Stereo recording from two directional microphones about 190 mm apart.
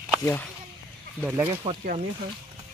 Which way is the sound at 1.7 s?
30° right (ahead or behind).